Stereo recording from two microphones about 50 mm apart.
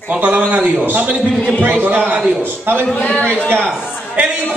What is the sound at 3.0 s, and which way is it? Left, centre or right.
Speech, left.